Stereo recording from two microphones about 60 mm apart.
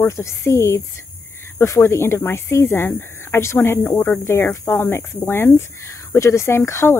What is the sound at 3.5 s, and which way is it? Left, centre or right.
Speech, left.